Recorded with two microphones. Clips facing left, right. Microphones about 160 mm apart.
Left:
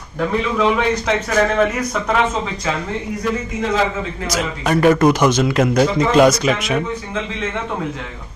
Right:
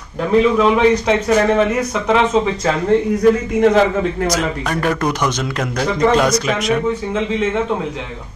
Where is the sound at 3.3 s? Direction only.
60° right (ahead or behind).